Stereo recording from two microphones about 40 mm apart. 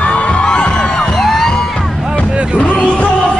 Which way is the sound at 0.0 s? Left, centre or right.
Left.